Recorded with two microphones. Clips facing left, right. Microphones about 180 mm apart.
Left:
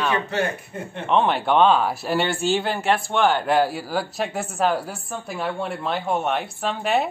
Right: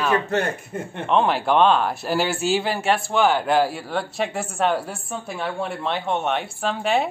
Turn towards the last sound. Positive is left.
turn(degrees=0)  # may be behind; listen again after turning